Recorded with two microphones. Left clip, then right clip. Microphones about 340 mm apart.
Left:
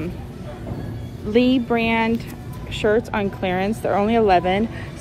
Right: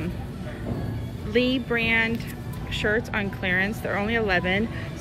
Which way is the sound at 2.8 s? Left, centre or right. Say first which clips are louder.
Left 6 dB; left.